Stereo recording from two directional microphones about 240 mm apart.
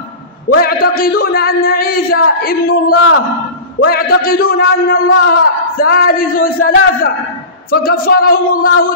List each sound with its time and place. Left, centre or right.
0.6 s speech: left